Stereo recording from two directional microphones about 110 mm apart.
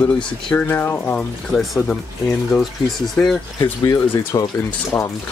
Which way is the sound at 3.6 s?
35° left (ahead or behind).